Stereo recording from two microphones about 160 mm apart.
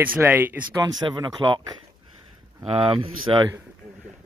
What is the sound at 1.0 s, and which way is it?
Speech, 30° right (ahead or behind).